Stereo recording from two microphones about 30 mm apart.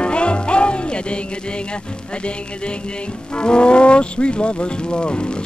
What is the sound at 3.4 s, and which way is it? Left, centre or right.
Speech, left.